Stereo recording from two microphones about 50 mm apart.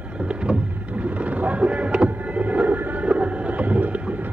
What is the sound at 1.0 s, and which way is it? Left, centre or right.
Vehicle, right.